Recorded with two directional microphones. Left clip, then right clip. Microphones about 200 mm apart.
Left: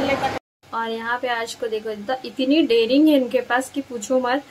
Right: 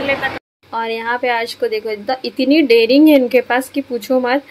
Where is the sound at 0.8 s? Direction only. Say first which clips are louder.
Right 5 dB; 15° right (ahead or behind).